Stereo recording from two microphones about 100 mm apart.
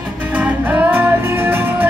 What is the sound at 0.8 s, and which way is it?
Music, 20° right (ahead or behind).